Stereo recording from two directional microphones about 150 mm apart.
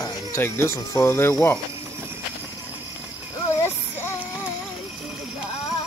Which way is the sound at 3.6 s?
15° left (ahead or behind).